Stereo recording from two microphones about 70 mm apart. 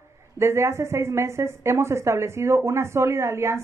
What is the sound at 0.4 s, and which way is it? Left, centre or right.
A woman's voice, right.